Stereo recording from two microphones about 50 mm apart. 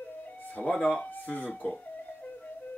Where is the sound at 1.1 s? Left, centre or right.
Left.